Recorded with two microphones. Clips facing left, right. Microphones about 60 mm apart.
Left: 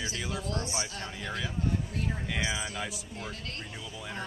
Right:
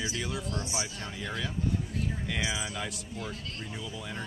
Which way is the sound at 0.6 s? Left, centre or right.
Centre.